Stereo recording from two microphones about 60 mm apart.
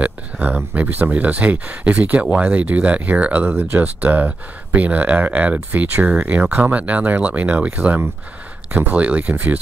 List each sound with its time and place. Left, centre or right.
0.0 s speech: right